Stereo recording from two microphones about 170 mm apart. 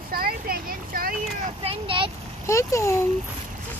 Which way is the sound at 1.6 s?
30° right (ahead or behind).